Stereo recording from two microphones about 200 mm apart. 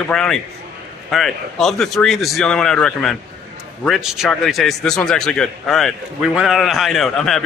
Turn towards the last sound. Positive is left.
turn(degrees=0)  # may be behind; listen again after turning